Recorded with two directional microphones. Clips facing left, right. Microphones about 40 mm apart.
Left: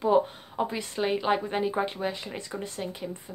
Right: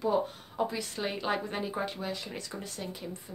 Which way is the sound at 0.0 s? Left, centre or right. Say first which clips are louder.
Left 6 dB; left.